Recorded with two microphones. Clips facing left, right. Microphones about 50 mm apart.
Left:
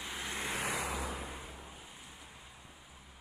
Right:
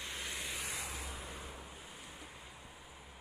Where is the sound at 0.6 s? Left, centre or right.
Left.